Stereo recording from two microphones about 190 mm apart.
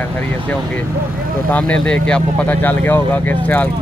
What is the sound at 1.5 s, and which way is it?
Speech, 5° left (ahead or behind).